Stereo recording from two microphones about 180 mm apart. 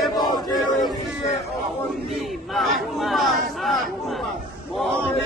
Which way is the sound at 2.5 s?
Centre (ahead or behind).